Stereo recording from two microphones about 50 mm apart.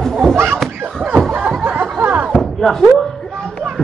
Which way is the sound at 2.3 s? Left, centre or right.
Centre.